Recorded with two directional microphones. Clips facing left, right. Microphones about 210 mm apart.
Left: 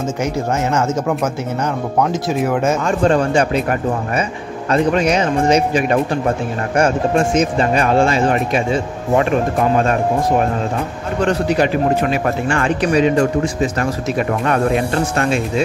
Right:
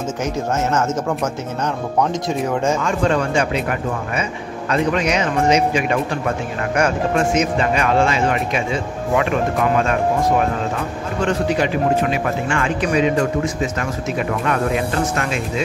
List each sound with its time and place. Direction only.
0.2 s speech: 10° left (ahead or behind)
2.8 s speech: 40° left (ahead or behind)
11.2 s speech: 40° left (ahead or behind)